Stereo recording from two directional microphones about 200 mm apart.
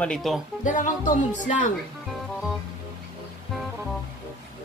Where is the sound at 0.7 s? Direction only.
40° left (ahead or behind).